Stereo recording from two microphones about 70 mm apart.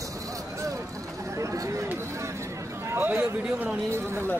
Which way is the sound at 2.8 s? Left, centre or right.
Right.